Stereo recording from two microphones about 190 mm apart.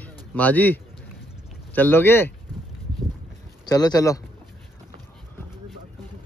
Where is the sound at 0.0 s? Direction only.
10° left (ahead or behind).